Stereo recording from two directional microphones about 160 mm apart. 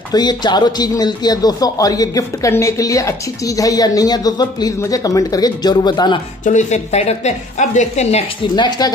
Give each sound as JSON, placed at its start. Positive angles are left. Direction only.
{"t": 0.1, "sound": "speech", "side_deg": 25}
{"t": 6.4, "sound": "a woman's voice", "side_deg": 45}
{"t": 8.5, "sound": "speech", "side_deg": 25}